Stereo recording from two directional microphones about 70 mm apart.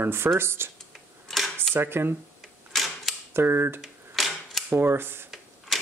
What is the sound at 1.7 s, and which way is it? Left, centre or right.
Speech, right.